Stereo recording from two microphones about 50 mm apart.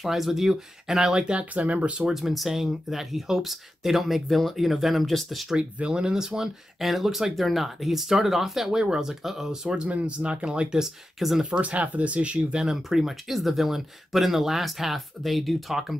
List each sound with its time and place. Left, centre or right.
0.0 s speech: centre
1.4 s speech: right
2.0 s speech: centre
5.6 s speech: centre
9.8 s speech: right
11.1 s speech: centre
11.5 s speech: right
12.5 s speech: centre